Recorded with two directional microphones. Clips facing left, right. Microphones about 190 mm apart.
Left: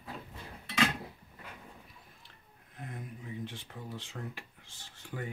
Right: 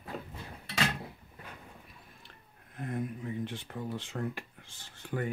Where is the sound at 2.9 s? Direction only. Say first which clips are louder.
Right 9 dB; 55° right (ahead or behind).